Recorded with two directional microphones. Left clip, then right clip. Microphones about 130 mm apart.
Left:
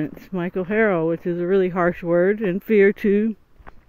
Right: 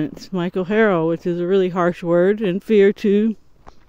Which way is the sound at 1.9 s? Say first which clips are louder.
Right 2 dB; 25° right (ahead or behind).